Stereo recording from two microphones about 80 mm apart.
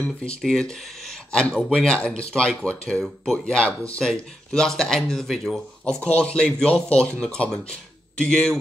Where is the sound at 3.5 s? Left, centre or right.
Centre.